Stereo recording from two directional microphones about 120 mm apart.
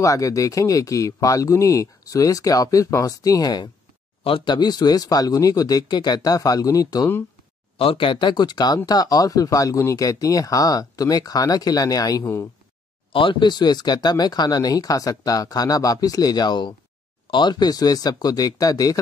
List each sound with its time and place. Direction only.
0.0 s speech: 25° left (ahead or behind)
7.7 s speech: 50° left (ahead or behind); by 12.4 s 25° left (ahead or behind)
13.1 s speech: 45° left (ahead or behind)